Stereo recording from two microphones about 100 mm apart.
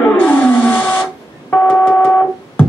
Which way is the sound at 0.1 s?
20° left (ahead or behind).